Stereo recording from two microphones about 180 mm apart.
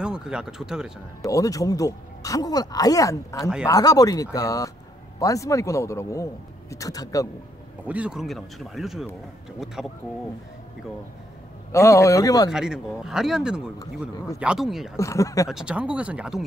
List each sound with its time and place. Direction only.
0.0 s speech: 5° right (ahead or behind)
1.2 s speech: 20° left (ahead or behind)
7.8 s speech: 5° right (ahead or behind)
11.7 s speech: 15° left (ahead or behind)
12.4 s speech: 5° right (ahead or behind)
15.0 s speech: 15° left (ahead or behind)
15.5 s speech: 5° right (ahead or behind)